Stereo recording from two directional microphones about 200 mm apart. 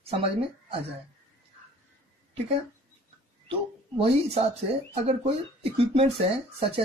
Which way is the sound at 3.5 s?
30° right (ahead or behind).